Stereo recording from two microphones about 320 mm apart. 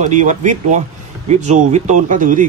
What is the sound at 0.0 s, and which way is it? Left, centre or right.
Speech, right.